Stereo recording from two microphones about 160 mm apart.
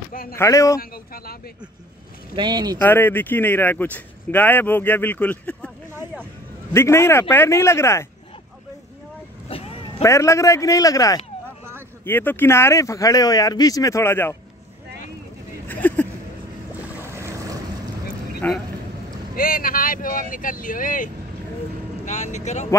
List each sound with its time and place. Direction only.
0.1 s a sound: 65° left (ahead or behind)
0.4 s speech: 20° left (ahead or behind)
0.7 s speech: 65° left (ahead or behind)
2.3 s speech: 25° right (ahead or behind)
2.8 s speech: 10° left (ahead or behind)
6.7 s speech: 15° left (ahead or behind)
9.5 s vehicle: 35° left (ahead or behind)
10.0 s speech: 20° left (ahead or behind)
15.7 s a sound: 10° left (ahead or behind)
17.0 s boat: 15° right (ahead or behind)
18.4 s speech: 10° left (ahead or behind)
19.3 s speech: 65° left (ahead or behind); by 22.7 s 45° left (ahead or behind)